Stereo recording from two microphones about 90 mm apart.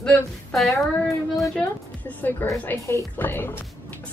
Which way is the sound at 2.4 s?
20° left (ahead or behind).